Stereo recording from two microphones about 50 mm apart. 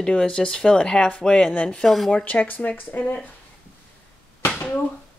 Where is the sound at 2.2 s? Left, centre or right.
Left.